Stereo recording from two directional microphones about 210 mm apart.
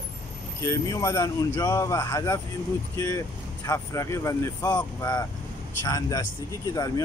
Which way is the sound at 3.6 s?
15° left (ahead or behind).